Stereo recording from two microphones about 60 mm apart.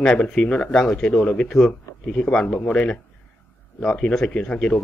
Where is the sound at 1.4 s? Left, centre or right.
Centre.